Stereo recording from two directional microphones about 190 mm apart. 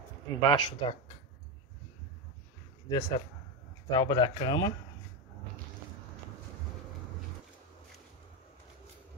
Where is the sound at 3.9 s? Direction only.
20° left (ahead or behind).